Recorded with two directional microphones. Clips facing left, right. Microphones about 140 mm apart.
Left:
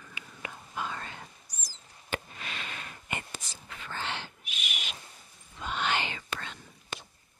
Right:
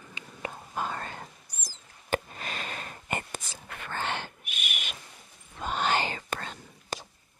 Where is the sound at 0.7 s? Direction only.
45° right (ahead or behind).